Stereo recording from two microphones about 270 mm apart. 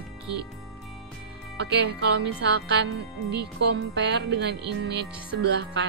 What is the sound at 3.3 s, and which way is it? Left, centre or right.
Speech, right.